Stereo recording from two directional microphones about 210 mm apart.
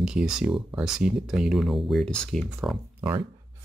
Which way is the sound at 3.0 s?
20° right (ahead or behind).